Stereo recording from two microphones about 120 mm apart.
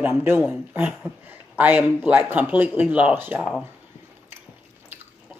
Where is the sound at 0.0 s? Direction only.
20° right (ahead or behind).